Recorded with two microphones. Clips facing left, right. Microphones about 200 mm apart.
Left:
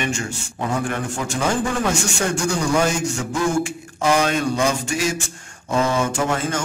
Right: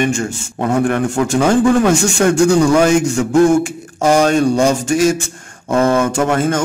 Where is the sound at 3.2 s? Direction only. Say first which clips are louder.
Right 11 dB; 55° right (ahead or behind).